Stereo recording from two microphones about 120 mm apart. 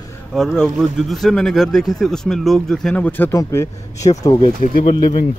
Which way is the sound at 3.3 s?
30° left (ahead or behind).